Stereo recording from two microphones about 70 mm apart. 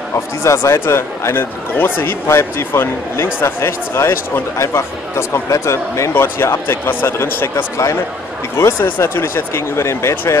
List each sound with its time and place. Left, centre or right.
0.1 s speech: left
6.1 s speech: left
7.7 s speech: left
8.5 s speech: left